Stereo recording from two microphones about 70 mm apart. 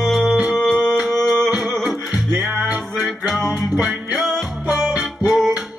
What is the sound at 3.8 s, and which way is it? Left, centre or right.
Music, centre.